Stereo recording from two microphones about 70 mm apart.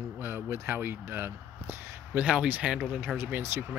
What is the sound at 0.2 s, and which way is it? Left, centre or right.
Speech, right.